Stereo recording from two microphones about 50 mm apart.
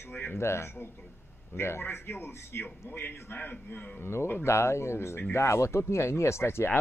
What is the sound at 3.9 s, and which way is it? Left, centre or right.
Speech, left.